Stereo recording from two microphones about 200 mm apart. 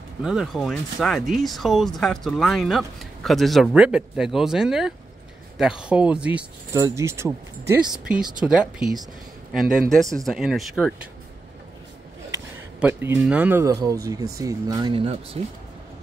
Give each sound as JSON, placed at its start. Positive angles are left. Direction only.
{"t": 0.2, "sound": "speech", "side_deg": 0}
{"t": 12.8, "sound": "speech", "side_deg": -10}